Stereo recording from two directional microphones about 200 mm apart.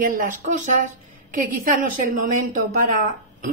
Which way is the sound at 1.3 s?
45° right (ahead or behind).